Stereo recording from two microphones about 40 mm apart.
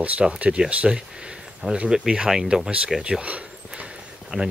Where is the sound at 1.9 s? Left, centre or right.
Centre.